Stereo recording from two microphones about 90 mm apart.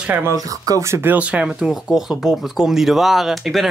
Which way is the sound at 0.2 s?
40° right (ahead or behind).